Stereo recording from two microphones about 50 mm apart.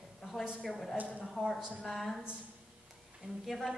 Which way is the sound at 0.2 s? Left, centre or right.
Centre.